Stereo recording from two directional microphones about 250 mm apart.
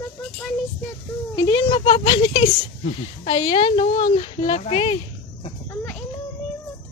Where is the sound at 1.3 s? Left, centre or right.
Centre.